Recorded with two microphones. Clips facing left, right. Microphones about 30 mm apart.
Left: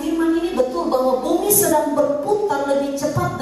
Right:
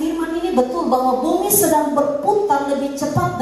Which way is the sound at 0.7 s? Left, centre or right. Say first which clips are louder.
Right 1 dB; centre.